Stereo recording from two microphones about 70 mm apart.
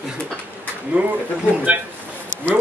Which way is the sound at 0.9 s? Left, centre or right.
Right.